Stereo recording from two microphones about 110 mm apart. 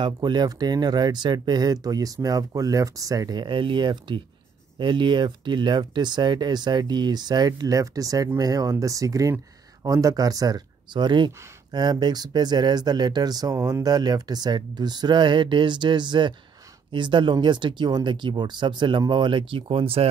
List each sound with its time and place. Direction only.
0.0 s speech: 40° right (ahead or behind); by 20.1 s 60° right (ahead or behind)